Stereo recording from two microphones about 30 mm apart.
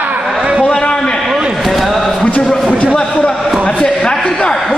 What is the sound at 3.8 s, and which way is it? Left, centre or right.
Speech, left.